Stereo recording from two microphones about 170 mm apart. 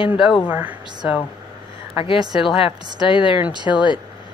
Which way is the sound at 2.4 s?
30° left (ahead or behind).